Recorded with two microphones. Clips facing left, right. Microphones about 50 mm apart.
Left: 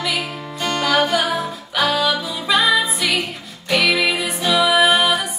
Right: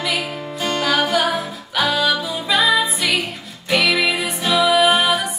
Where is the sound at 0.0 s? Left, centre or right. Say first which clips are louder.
Right 1 dB; centre.